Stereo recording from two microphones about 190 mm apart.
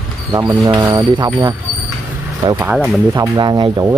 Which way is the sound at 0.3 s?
25° right (ahead or behind).